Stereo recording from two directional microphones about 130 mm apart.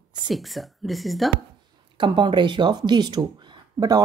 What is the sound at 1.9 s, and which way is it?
Speech, 35° right (ahead or behind).